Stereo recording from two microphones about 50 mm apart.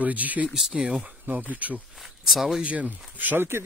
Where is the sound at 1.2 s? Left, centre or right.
Right.